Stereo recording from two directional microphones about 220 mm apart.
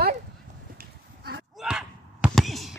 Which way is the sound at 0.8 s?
45° right (ahead or behind).